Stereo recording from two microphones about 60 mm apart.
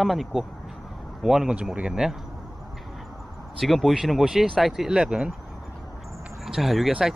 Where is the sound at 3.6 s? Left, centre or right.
Centre.